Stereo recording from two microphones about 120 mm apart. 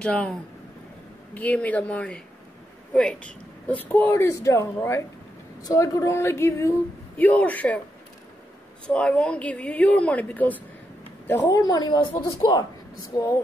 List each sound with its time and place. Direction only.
0.0 s a woman's voice: 10° left (ahead or behind)
8.8 s a woman's voice: 10° left (ahead or behind); by 13.4 s 25° left (ahead or behind)